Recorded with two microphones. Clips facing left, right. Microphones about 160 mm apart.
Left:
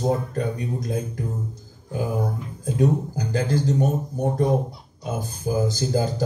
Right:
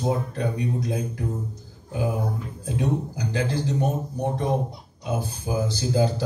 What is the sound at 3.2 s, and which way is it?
Speech, 40° left (ahead or behind).